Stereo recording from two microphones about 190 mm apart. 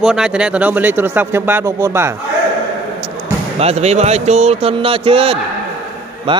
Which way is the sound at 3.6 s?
35° right (ahead or behind).